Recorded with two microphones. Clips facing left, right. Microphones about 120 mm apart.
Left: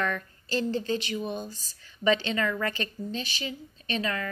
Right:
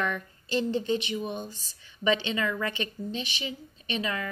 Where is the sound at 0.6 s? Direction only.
25° right (ahead or behind).